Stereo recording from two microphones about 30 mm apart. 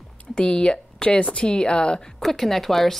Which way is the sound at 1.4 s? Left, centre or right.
Left.